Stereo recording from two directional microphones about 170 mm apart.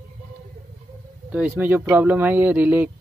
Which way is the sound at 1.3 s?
10° right (ahead or behind).